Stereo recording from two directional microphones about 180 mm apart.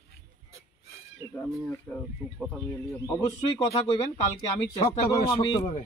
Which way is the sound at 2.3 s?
5° right (ahead or behind).